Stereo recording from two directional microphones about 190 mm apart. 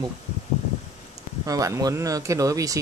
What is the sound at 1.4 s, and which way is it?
Speech, 15° right (ahead or behind).